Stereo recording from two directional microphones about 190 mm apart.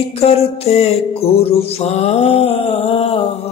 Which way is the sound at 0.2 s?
30° left (ahead or behind).